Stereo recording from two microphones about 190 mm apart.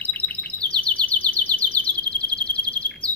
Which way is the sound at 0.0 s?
10° left (ahead or behind).